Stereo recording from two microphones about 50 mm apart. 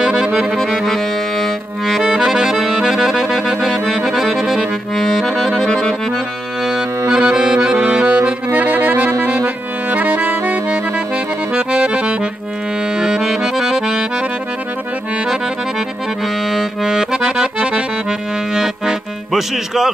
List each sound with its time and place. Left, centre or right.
0.0 s saxophone: centre
1.9 s accordion: centre
4.9 s accordion: centre
7.1 s accordion: centre
8.5 s accordion: right
9.8 s music: right
11.5 s accordion: right
13.0 s accordion: centre
16.5 s accordion: centre
18.5 s music: centre